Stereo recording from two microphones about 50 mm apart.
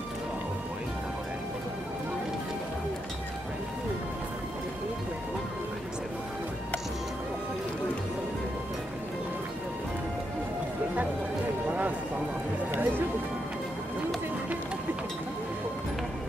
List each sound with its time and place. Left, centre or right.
12.7 s music: right